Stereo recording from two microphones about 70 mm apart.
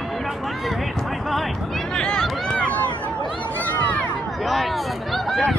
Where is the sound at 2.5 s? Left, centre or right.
Left.